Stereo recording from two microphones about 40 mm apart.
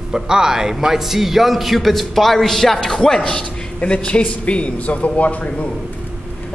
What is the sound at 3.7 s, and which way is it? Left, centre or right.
A man's voice, left.